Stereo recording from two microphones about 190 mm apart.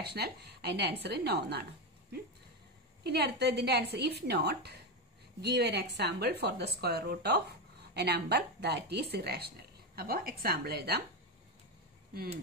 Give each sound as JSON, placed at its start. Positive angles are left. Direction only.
{"t": 0.0, "sound": "speech", "side_deg": -60}
{"t": 3.1, "sound": "speech", "side_deg": -60}